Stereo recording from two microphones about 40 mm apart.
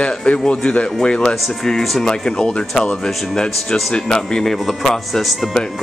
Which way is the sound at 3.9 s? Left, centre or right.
Centre.